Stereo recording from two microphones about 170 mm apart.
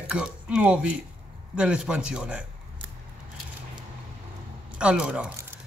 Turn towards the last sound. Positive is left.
turn(degrees=-5)  # may be behind; listen again after turning